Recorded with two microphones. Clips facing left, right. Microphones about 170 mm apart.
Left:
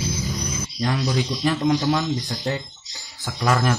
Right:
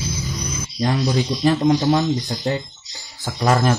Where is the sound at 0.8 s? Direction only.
30° right (ahead or behind).